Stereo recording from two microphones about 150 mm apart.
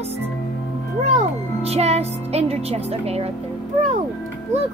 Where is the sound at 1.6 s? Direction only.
45° right (ahead or behind).